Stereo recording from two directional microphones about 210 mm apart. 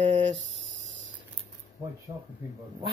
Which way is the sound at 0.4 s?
65° right (ahead or behind).